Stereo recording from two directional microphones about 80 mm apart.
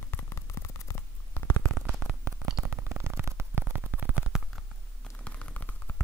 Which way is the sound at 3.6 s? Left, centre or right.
Centre.